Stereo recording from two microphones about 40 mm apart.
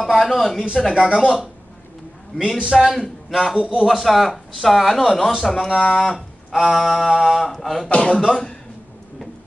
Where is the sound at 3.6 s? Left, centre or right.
Right.